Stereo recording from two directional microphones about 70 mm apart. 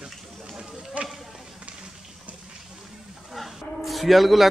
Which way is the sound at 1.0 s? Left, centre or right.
Centre.